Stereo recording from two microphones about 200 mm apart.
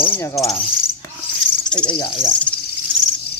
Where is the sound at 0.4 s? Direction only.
Centre (ahead or behind).